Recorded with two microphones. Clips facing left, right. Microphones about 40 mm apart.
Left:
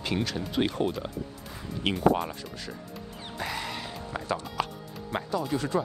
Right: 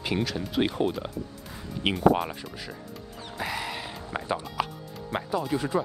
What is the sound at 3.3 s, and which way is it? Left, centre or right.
Music, centre.